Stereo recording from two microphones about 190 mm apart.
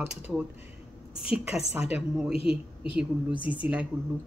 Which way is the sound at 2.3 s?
30° left (ahead or behind).